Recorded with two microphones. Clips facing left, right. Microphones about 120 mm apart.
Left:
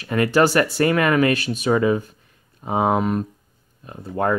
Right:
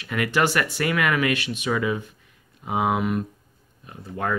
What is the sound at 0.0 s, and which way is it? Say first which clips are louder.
Speech: left 6 dB; 35° left (ahead or behind).